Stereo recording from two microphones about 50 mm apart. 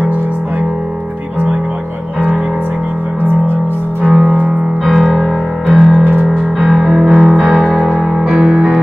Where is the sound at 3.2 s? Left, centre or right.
Right.